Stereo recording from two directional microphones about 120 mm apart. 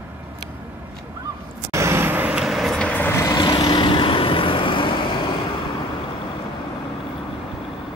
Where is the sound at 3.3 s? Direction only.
40° left (ahead or behind).